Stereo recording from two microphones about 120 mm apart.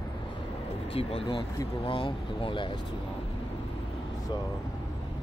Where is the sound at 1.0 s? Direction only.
50° left (ahead or behind).